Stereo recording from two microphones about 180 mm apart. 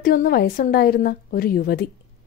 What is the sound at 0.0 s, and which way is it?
A woman's voice, 55° left (ahead or behind).